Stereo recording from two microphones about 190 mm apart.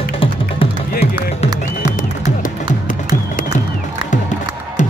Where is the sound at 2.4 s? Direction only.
45° left (ahead or behind).